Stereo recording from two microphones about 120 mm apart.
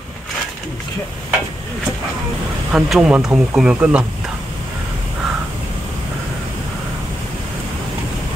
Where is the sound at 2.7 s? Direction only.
10° right (ahead or behind).